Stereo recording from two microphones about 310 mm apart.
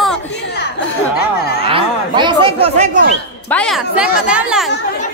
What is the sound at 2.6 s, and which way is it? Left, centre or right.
Chatter, centre.